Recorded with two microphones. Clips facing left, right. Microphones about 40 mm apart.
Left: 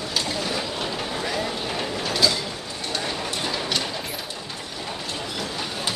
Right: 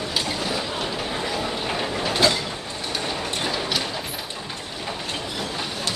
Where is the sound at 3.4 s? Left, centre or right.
Centre.